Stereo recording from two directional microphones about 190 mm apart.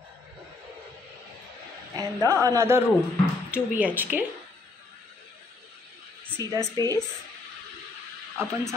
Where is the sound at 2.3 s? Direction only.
15° right (ahead or behind).